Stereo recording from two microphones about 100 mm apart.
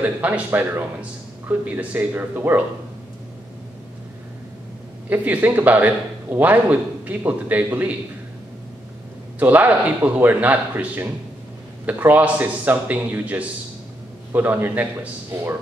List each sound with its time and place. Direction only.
0.0 s a man's voice: 20° right (ahead or behind)
5.1 s a man's voice: 15° right (ahead or behind)
9.4 s a man's voice: 15° right (ahead or behind)